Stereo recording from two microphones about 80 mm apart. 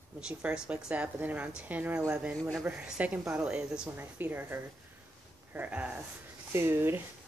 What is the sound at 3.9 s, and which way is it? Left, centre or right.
Speech, right.